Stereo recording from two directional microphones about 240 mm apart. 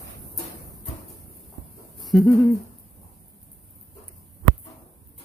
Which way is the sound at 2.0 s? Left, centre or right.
Centre.